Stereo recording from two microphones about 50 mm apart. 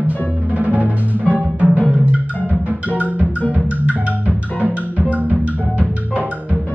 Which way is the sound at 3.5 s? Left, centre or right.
Right.